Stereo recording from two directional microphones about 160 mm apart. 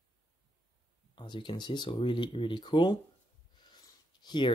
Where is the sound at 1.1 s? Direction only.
30° left (ahead or behind).